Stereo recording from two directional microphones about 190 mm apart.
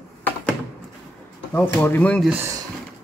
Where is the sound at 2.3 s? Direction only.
15° right (ahead or behind).